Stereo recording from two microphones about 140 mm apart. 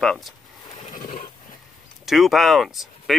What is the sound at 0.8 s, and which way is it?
Neigh, 65° left (ahead or behind).